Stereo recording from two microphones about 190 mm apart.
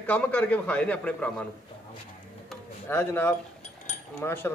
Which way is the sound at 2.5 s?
10° left (ahead or behind).